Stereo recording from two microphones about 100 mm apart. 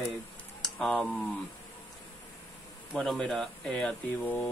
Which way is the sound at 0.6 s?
5° left (ahead or behind).